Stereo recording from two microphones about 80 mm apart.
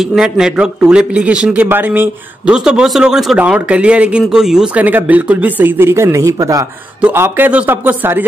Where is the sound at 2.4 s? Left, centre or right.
Centre.